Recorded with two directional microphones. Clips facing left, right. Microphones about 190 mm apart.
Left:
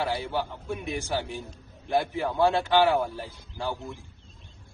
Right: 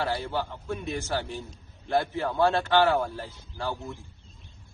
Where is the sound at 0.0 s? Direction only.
15° left (ahead or behind).